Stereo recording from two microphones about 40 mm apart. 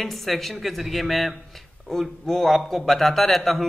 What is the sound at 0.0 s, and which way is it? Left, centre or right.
A man's voice, centre.